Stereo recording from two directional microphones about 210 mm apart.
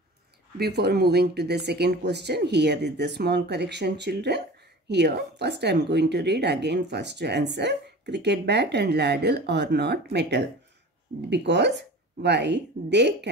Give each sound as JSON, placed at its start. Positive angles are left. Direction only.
{"t": 0.6, "sound": "a woman's voice", "side_deg": -50}